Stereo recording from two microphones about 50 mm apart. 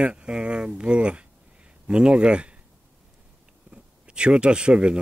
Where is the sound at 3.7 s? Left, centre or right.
Right.